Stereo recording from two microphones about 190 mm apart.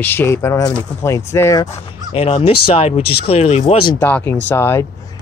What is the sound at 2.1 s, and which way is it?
Speech, 30° left (ahead or behind).